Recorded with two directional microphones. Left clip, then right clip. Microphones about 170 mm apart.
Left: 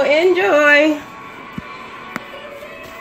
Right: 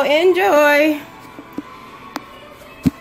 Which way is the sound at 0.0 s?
50° right (ahead or behind).